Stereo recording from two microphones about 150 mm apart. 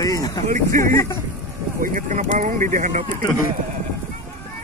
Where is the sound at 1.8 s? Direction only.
65° right (ahead or behind).